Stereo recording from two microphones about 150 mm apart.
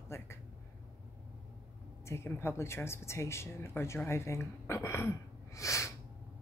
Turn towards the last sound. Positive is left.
turn(degrees=20)  # may be behind; listen again after turning